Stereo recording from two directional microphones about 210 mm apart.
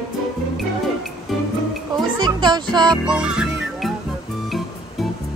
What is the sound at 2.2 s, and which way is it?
Music, 20° right (ahead or behind).